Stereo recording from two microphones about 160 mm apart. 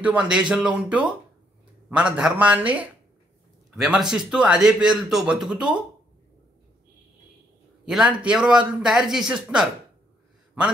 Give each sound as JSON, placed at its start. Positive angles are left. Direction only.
{"t": 0.0, "sound": "a man's voice", "side_deg": -5}
{"t": 7.8, "sound": "a man's voice", "side_deg": -5}